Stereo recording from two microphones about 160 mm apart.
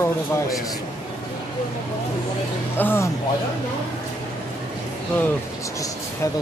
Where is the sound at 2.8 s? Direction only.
15° left (ahead or behind).